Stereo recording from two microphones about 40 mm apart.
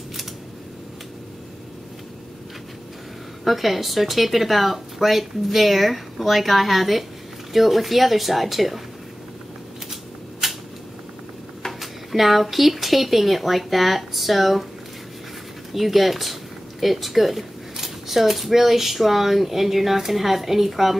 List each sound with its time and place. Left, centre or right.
3.4 s speech: centre
10.4 s a sound: centre
11.8 s speech: centre
15.7 s speech: centre